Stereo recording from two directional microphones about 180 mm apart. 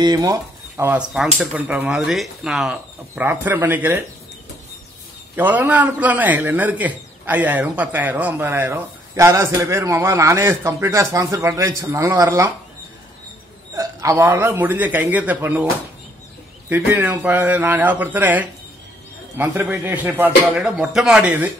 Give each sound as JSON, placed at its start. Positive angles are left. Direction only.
{"t": 0.0, "sound": "a man's voice", "side_deg": -20}
{"t": 5.3, "sound": "a man's voice", "side_deg": -10}
{"t": 13.7, "sound": "a man's voice", "side_deg": -15}
{"t": 16.6, "sound": "a man's voice", "side_deg": -10}